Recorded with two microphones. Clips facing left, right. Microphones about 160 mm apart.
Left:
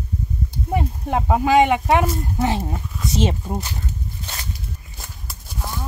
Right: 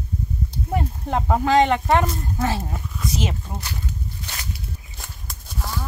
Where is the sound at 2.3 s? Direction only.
20° left (ahead or behind).